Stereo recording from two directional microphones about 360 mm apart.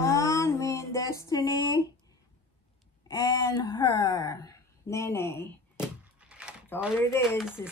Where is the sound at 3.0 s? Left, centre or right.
Centre.